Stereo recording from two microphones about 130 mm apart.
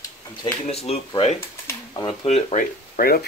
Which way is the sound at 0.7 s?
50° left (ahead or behind).